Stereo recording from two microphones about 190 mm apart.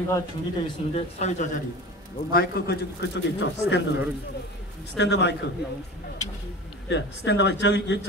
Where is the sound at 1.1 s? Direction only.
35° left (ahead or behind).